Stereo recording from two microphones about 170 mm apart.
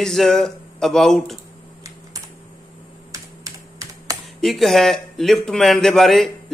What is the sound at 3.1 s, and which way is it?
Computer keyboard, 20° right (ahead or behind).